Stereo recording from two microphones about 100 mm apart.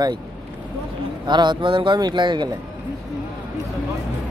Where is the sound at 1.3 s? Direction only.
50° right (ahead or behind).